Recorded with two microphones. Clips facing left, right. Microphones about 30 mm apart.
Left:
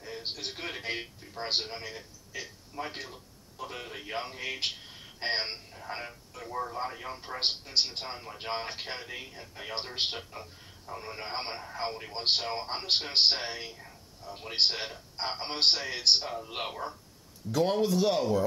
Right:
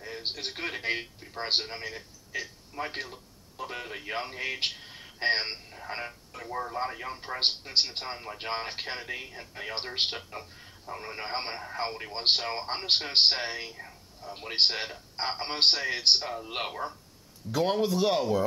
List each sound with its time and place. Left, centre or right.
0.5 s a man's voice: centre